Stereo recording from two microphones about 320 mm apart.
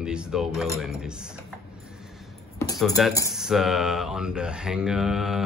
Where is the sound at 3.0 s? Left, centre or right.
Centre.